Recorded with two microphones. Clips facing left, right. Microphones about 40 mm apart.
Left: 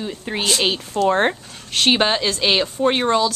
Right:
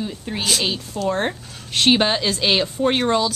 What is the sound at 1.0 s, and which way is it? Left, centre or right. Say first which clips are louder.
Speech: left 5 dB; left.